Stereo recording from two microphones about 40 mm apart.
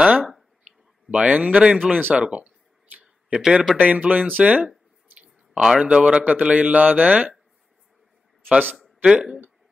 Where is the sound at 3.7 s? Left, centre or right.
Right.